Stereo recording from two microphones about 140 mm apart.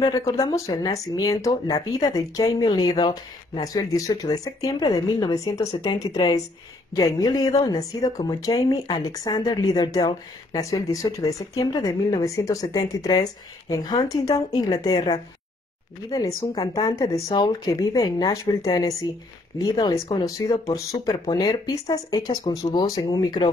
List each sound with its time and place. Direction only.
0.0 s speech: 25° left (ahead or behind)
16.3 s speech: 30° left (ahead or behind)